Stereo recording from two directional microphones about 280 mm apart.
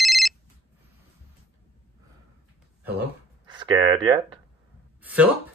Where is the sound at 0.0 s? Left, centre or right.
Centre.